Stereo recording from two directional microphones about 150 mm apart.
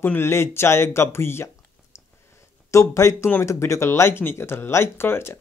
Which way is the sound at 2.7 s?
20° left (ahead or behind).